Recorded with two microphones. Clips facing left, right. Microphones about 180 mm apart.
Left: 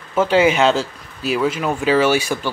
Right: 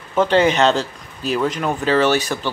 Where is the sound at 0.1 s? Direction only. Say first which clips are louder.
Even; 5° left (ahead or behind).